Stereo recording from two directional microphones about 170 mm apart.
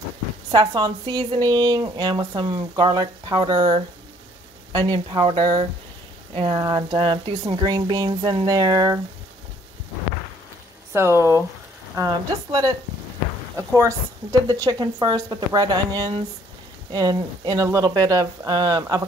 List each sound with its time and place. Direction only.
0.5 s speech: 25° right (ahead or behind)
10.9 s speech: 15° right (ahead or behind)